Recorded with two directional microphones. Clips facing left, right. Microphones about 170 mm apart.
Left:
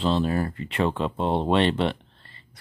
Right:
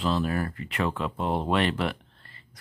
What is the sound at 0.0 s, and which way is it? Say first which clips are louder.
Speech: left 3 dB; 25° left (ahead or behind).